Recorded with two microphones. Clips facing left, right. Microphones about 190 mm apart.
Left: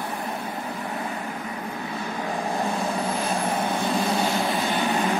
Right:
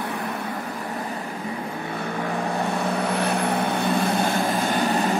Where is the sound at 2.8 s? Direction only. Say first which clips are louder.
Right 2 dB; 65° right (ahead or behind); by 4.8 s 45° right (ahead or behind).